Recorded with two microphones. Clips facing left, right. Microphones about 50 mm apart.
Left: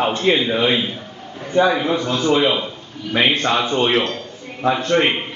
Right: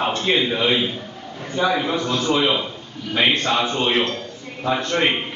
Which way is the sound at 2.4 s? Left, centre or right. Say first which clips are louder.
Left 2 dB; centre.